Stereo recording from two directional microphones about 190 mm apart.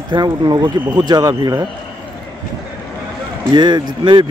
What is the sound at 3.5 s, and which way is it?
Speech, 25° right (ahead or behind).